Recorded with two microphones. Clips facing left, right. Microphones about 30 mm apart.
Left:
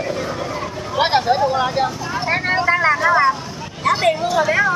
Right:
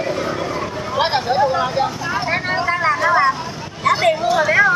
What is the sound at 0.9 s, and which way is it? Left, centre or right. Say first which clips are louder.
Speech: left 2 dB; centre.